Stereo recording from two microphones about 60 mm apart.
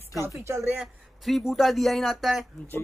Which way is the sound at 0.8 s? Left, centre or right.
Centre.